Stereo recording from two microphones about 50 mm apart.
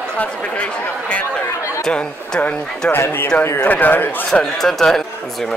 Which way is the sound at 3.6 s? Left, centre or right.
Left.